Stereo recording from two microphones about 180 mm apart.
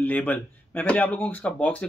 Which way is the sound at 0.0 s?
10° left (ahead or behind).